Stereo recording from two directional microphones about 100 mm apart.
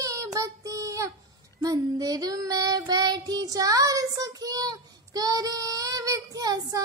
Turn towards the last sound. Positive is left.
turn(degrees=-40)  # may be behind; listen again after turning